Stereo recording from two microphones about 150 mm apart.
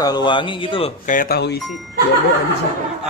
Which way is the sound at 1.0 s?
75° left (ahead or behind).